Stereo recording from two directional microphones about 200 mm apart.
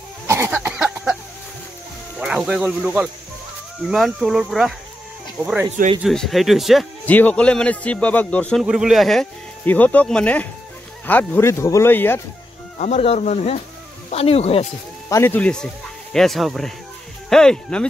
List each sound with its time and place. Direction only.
0.3 s cough: 10° right (ahead or behind)
2.1 s a man's voice: 5° right (ahead or behind)
8.6 s a man's voice: 5° right (ahead or behind)
12.7 s speech: 35° left (ahead or behind)
15.0 s a man's voice: 10° left (ahead or behind)